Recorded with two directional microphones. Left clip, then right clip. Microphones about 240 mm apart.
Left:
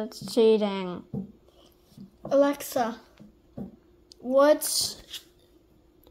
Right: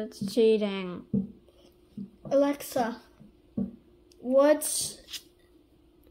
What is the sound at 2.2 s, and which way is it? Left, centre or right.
Speech, centre.